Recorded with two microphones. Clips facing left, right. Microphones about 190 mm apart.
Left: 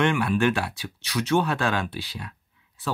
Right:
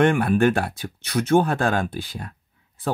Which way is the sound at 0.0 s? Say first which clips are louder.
Right 4 dB; 50° right (ahead or behind).